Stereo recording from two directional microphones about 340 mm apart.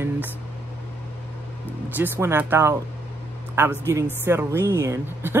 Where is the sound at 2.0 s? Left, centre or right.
Centre.